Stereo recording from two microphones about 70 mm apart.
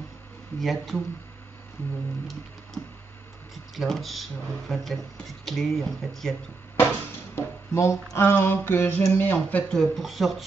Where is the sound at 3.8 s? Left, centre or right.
Centre.